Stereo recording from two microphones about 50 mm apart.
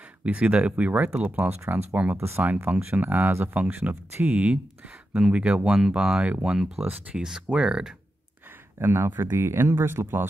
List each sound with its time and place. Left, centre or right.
0.2 s speech: right
2.1 s speech: right
2.4 s speech: right
3.3 s speech: right
3.5 s speech: right
3.9 s speech: right
4.4 s speech: right
5.7 s speech: centre
8.7 s speech: right